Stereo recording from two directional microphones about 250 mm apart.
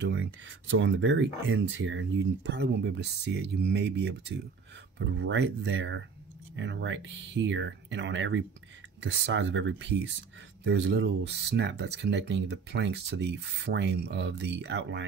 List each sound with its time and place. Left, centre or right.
0.0 s speech: right